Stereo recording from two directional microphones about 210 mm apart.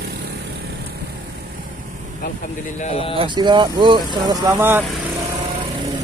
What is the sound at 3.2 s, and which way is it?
Speech, 20° right (ahead or behind).